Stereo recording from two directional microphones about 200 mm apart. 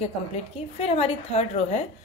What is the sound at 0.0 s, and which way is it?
A woman's voice, 30° left (ahead or behind).